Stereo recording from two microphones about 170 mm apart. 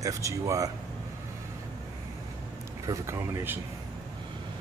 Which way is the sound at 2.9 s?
15° right (ahead or behind).